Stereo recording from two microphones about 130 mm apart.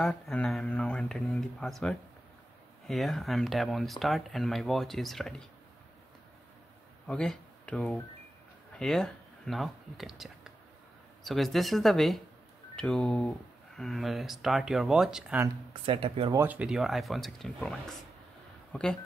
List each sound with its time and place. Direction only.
0.0 s speech: 5° left (ahead or behind)
7.1 s speech: 10° left (ahead or behind)
15.8 s speech: 45° right (ahead or behind)
16.3 s speech: 10° right (ahead or behind); by 18.9 s 5° left (ahead or behind)